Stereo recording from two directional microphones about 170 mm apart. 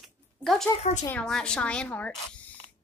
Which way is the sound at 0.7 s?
40° left (ahead or behind).